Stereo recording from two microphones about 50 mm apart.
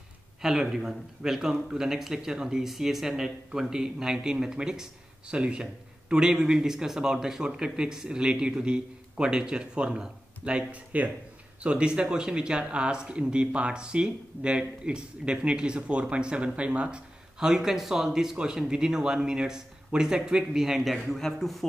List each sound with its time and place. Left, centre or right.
0.4 s speech: centre
17.5 s speech: centre